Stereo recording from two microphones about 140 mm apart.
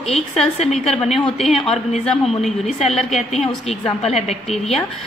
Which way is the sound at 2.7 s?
50° left (ahead or behind).